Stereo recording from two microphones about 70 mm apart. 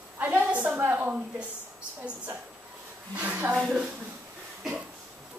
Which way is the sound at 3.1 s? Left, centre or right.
Right.